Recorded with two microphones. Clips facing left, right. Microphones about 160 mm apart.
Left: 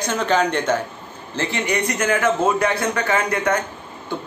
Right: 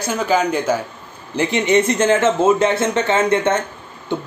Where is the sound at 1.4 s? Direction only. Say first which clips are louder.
Right 7 dB; 20° right (ahead or behind).